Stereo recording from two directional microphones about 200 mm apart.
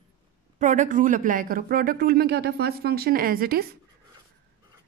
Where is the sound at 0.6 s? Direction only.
40° right (ahead or behind).